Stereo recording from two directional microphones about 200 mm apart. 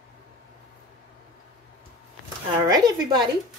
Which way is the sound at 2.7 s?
20° right (ahead or behind).